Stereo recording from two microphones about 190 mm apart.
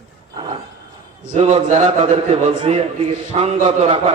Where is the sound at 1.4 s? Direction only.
35° right (ahead or behind).